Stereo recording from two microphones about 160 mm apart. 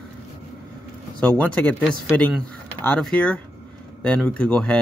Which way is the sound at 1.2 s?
10° left (ahead or behind).